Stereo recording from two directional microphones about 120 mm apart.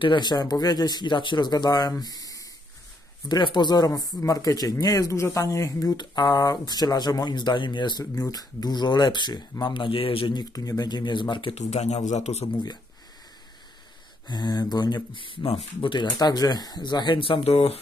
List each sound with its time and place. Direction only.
0.0 s speech: 40° left (ahead or behind)
8.0 s speech: 30° left (ahead or behind); by 10.4 s 45° left (ahead or behind)
10.5 s speech: 30° left (ahead or behind)
11.7 s speech: 70° left (ahead or behind)
14.2 s speech: 35° left (ahead or behind)
15.1 s speech: 45° left (ahead or behind)